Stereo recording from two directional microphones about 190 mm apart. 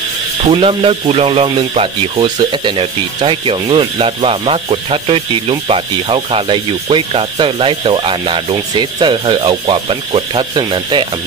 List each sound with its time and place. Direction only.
0.5 s speech: 30° right (ahead or behind)